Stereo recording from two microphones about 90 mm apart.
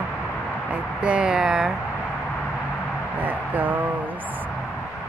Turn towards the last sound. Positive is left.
turn(degrees=-20)  # may be behind; listen again after turning